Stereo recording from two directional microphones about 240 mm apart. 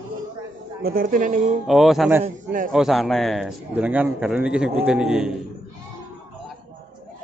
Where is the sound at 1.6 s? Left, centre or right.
Centre.